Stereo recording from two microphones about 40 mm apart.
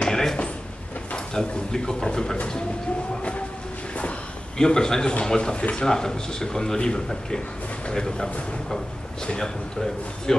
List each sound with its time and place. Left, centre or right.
0.1 s a sound: centre
1.1 s speech: centre
3.2 s a sound: left
4.6 s a man's voice: centre
5.6 s speech: left
5.9 s a man's voice: centre